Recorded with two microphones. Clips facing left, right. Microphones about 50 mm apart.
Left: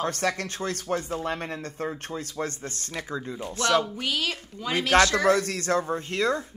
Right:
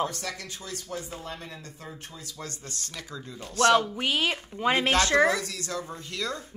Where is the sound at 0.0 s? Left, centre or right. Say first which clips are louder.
Left 4 dB; left.